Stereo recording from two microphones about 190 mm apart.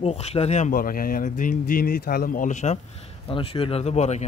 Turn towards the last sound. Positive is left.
turn(degrees=35)  # may be behind; listen again after turning